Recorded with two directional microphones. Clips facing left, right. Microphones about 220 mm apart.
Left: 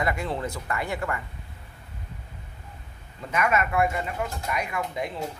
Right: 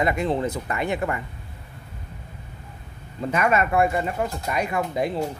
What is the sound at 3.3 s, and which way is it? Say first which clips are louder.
Speech: right 3 dB; 30° right (ahead or behind).